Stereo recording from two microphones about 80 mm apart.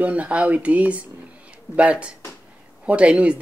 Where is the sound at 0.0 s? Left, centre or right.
Centre.